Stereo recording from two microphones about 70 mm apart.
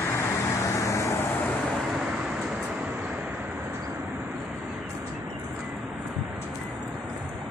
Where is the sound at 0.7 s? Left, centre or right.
Left.